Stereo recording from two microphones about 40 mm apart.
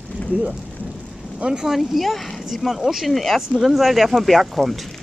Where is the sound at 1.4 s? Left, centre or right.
Centre.